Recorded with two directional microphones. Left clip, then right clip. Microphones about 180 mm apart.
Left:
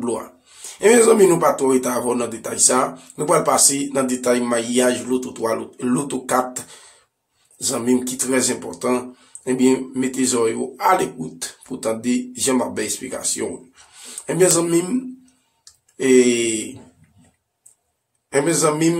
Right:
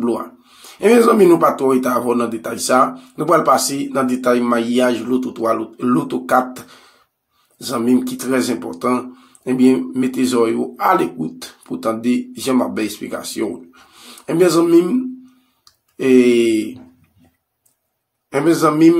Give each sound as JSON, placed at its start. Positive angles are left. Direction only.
{"t": 0.7, "sound": "speech", "side_deg": -15}
{"t": 15.6, "sound": "a sound", "side_deg": -15}
{"t": 18.3, "sound": "speech", "side_deg": -15}